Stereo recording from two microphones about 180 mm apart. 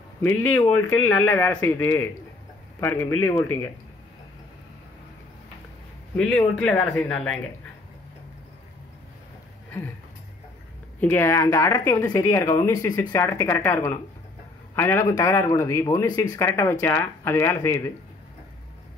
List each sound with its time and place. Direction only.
0.2 s speech: 10° left (ahead or behind)
6.1 s speech: 5° left (ahead or behind)
11.0 s speech: 10° left (ahead or behind)